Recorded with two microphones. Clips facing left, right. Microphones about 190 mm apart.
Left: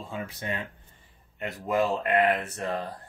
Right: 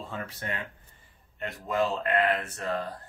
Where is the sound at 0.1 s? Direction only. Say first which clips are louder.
Left 4 dB; 15° left (ahead or behind).